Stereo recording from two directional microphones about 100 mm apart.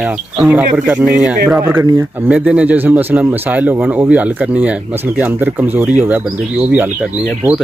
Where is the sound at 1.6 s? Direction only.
25° right (ahead or behind).